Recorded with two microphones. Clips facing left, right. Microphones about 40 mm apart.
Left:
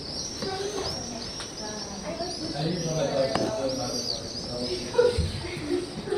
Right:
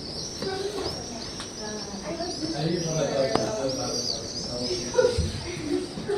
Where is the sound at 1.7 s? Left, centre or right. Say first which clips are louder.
Right 2 dB; centre.